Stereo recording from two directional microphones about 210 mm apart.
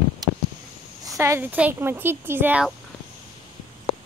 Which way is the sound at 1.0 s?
15° right (ahead or behind).